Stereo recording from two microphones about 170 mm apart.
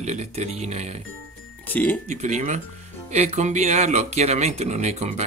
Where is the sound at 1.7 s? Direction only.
10° left (ahead or behind).